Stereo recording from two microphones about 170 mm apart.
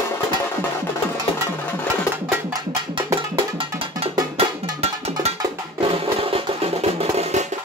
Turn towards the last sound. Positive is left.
turn(degrees=-40)  # may be behind; listen again after turning